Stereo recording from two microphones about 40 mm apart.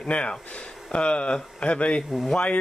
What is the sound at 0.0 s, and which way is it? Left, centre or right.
Speech, left.